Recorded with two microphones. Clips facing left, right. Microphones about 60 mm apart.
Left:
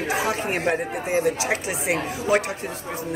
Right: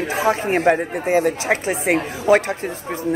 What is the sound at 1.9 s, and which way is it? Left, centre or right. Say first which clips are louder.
Speech: right 6 dB; right.